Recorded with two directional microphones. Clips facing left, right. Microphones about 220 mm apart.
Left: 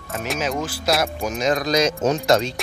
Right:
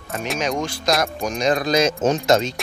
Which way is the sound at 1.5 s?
30° right (ahead or behind).